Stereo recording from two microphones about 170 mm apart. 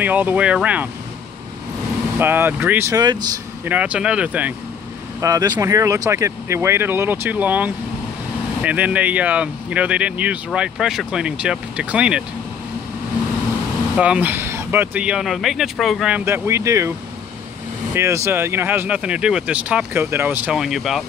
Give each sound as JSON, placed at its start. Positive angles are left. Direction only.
{"t": 0.0, "sound": "speech", "side_deg": -10}
{"t": 2.1, "sound": "speech", "side_deg": -10}
{"t": 3.6, "sound": "speech", "side_deg": -10}
{"t": 5.2, "sound": "speech", "side_deg": -20}
{"t": 13.9, "sound": "speech", "side_deg": -5}
{"t": 16.3, "sound": "speech", "side_deg": -15}
{"t": 17.9, "sound": "speech", "side_deg": -15}